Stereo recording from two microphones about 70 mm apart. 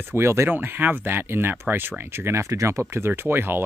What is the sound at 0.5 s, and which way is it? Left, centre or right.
Speech, right.